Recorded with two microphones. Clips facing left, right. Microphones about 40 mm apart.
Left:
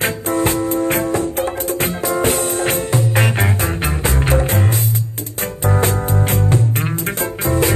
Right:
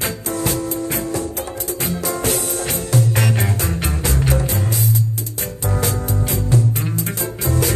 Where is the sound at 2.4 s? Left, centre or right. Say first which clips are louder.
Left 6 dB; left.